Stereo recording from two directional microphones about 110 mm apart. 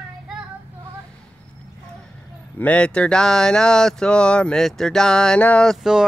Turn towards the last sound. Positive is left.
turn(degrees=0)  # may be behind; listen again after turning